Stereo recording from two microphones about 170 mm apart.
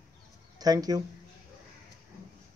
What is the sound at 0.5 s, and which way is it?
Speech, 20° right (ahead or behind).